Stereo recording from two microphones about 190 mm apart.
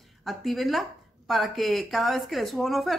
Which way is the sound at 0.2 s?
Centre (ahead or behind).